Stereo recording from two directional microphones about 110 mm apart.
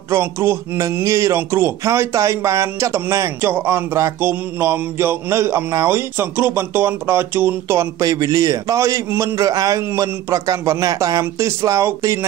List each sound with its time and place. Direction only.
0.1 s speech: 20° right (ahead or behind)
8.0 s a man's voice: 35° right (ahead or behind)